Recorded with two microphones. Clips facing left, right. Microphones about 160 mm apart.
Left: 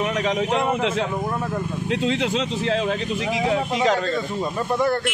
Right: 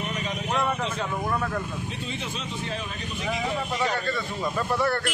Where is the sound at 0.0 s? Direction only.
90° left.